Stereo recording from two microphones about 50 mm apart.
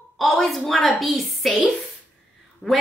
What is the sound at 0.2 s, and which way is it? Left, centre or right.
A woman's voice, centre.